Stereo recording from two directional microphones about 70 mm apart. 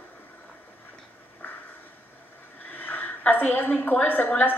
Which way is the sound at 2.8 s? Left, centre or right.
Left.